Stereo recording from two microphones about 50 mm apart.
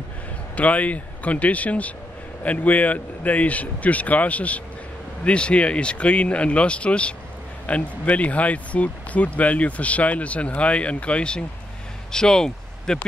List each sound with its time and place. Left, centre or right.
0.6 s speech: left; by 13.0 s centre